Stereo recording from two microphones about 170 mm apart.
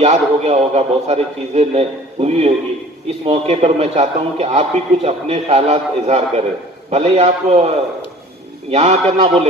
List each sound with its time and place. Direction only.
0.0 s a man's voice: 40° right (ahead or behind)